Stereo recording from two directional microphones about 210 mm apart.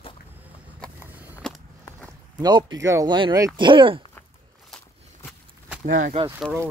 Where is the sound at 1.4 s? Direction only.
5° left (ahead or behind).